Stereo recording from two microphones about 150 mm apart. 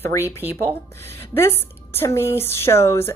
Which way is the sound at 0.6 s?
15° left (ahead or behind).